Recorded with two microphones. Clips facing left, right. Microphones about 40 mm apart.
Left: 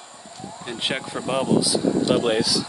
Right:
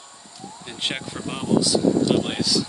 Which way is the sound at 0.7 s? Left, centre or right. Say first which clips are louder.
Left 1 dB; centre.